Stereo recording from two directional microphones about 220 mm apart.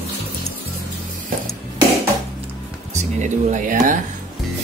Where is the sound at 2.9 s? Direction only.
35° right (ahead or behind).